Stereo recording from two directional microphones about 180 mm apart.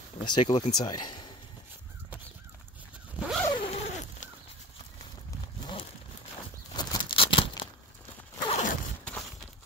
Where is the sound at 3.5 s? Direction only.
30° left (ahead or behind).